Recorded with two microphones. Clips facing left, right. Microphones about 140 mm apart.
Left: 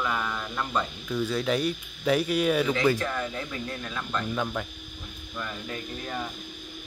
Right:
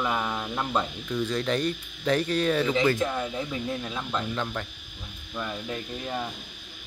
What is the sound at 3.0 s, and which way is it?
Speech, 10° right (ahead or behind).